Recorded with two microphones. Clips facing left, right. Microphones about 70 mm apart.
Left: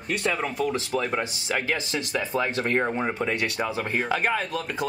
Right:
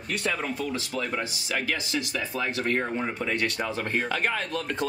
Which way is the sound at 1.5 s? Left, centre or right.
Left.